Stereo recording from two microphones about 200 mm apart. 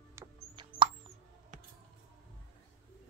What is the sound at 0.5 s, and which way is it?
Plop, 25° right (ahead or behind).